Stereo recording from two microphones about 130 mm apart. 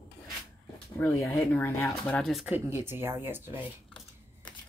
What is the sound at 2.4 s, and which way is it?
Speech, 20° right (ahead or behind).